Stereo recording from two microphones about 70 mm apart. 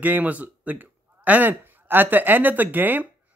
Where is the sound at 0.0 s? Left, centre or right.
Right.